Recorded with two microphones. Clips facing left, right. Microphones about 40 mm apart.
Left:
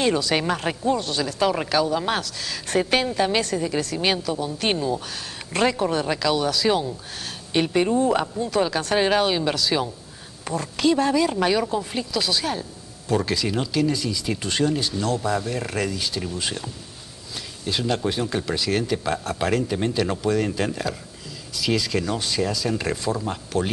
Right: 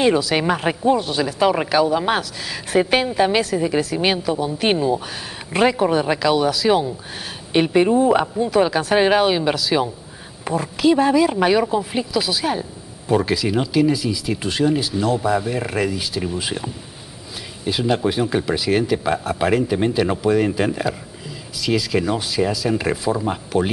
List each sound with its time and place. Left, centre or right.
0.4 s speech: centre
21.5 s speech: centre
21.9 s speech: centre